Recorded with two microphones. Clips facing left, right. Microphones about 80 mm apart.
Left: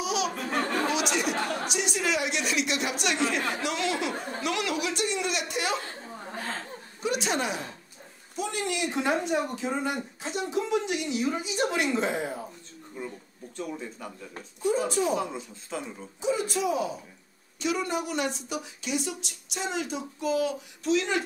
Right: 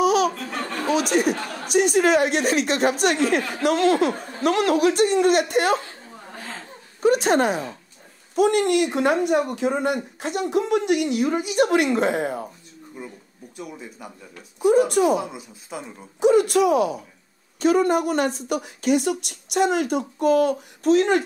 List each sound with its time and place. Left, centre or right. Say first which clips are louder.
0.0 s laughter: right 10 dB; right
0.8 s a sound: right 7 dB; right
1.7 s a woman's voice: right 11 dB; right
7.0 s a woman's voice: right 10 dB; right
8.4 s speech: right 12 dB; right
13.0 s speech: left 1 dB; centre
14.9 s speech: right 8 dB; right
15.1 s speech: right 3 dB; centre
16.2 s speech: right 11 dB; right
17.6 s a woman's voice: right 10 dB; right